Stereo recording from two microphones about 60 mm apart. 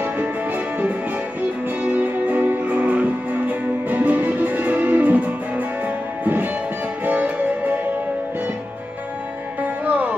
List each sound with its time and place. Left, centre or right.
0.0 s music: right
9.6 s music: right